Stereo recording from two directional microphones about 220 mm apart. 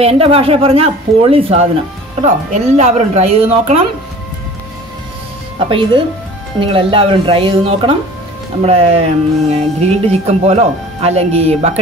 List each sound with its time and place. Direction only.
0.0 s a woman's voice: 25° right (ahead or behind)
5.6 s speech: 25° right (ahead or behind)